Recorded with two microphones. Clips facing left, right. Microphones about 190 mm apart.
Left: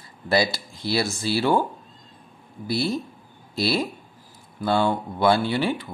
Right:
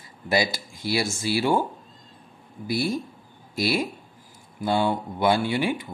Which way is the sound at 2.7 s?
15° right (ahead or behind).